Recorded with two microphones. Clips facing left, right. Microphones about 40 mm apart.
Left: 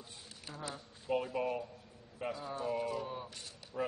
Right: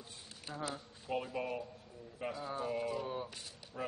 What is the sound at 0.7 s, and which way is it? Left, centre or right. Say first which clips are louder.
Speech: left 5 dB; centre.